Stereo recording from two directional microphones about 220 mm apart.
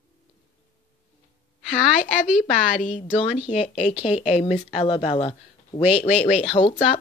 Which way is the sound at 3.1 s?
25° left (ahead or behind).